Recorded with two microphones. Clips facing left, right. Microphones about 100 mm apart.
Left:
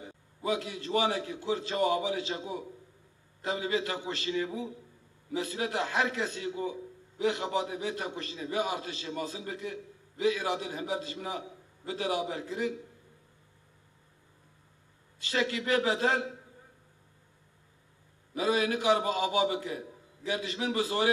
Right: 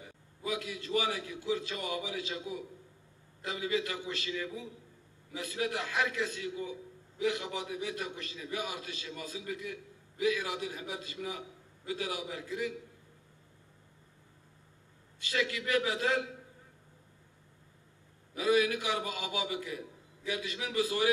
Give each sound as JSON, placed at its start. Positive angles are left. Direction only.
{"t": 0.0, "sound": "a man's voice", "side_deg": 30}
{"t": 15.1, "sound": "a man's voice", "side_deg": 30}
{"t": 18.3, "sound": "a man's voice", "side_deg": 30}